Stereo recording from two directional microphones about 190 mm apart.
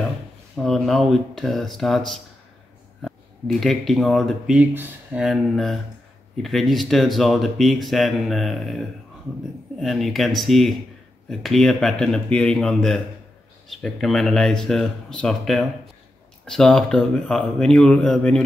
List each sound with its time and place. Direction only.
0.6 s speech: centre (ahead or behind)